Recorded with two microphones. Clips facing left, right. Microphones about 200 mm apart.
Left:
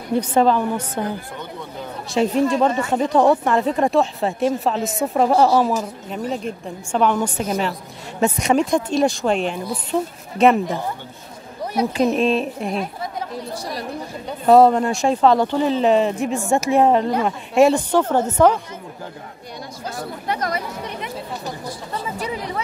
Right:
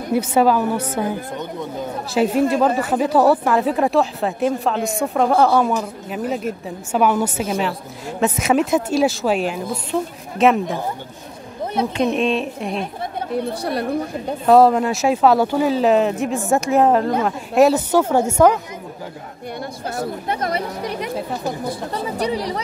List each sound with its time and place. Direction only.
0.1 s speech: 10° right (ahead or behind)
2.2 s speech: 5° right (ahead or behind)
12.0 s speech: centre (ahead or behind)
13.3 s a woman's voice: 60° right (ahead or behind)
14.4 s speech: centre (ahead or behind)
20.0 s speech: 25° right (ahead or behind)
21.0 s speech: 45° right (ahead or behind)